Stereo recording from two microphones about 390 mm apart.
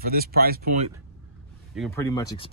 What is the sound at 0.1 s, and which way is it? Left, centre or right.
Speech, right.